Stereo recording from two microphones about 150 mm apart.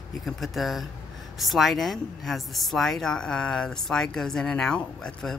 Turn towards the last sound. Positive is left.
turn(degrees=5)  # may be behind; listen again after turning